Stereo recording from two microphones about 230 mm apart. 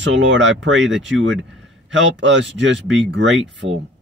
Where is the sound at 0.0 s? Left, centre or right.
Right.